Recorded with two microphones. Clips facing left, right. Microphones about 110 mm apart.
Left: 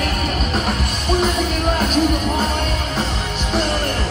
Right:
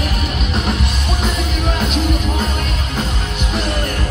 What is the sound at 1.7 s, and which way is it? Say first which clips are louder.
Music: left 2 dB; 45° left (ahead or behind).